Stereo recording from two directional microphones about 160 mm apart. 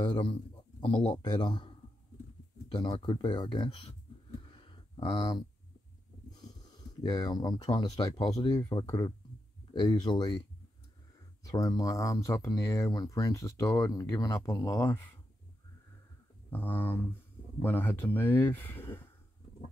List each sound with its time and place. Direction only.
0.0 s speech: 30° left (ahead or behind)
2.7 s speech: 25° left (ahead or behind)
4.4 s a sound: 30° left (ahead or behind)
6.3 s speech: 25° left (ahead or behind)
11.4 s speech: 20° left (ahead or behind)
16.4 s speech: 10° left (ahead or behind)